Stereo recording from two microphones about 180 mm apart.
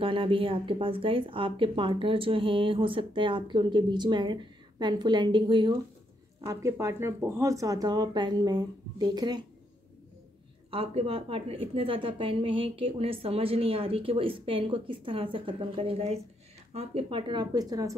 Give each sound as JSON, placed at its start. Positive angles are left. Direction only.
{"t": 0.0, "sound": "speech", "side_deg": -30}
{"t": 10.7, "sound": "a woman's voice", "side_deg": -30}